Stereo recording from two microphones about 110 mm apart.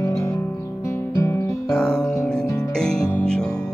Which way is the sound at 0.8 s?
25° left (ahead or behind).